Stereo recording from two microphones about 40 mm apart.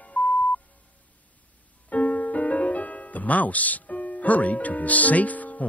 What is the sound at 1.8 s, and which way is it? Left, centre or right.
Music, left.